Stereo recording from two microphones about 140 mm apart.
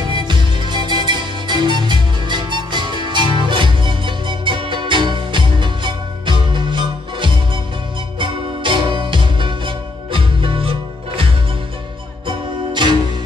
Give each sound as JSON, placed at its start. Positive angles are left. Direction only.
{"t": 0.1, "sound": "music", "side_deg": -35}
{"t": 12.3, "sound": "music", "side_deg": -35}